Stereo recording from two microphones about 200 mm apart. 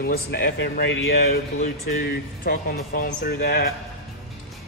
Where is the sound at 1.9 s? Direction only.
45° left (ahead or behind).